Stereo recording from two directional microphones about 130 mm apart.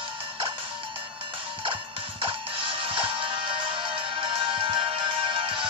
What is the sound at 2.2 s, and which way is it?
Music, 40° right (ahead or behind).